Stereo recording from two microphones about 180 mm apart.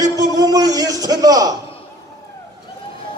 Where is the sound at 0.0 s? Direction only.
20° right (ahead or behind).